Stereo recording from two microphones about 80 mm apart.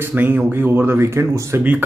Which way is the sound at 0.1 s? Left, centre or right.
Right.